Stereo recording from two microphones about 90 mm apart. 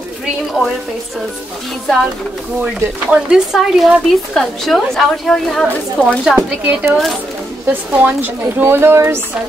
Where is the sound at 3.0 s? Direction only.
5° right (ahead or behind).